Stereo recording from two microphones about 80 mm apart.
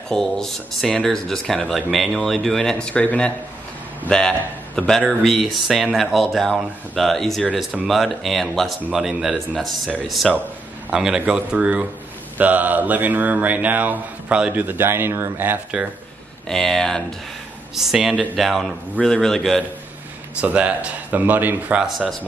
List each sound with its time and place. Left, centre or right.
0.1 s a man's voice: centre
5.2 s speech: centre; by 15.6 s right
16.4 s a man's voice: centre
20.3 s speech: centre
21.7 s speech: centre